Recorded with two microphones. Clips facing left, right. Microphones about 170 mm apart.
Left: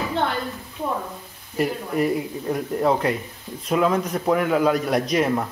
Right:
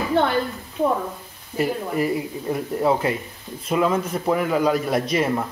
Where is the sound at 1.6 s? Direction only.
Centre (ahead or behind).